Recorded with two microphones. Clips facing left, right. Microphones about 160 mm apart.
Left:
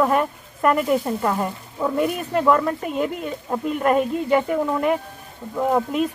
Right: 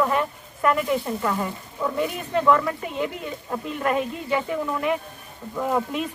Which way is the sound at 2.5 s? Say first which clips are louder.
Left 1 dB; 40° left (ahead or behind).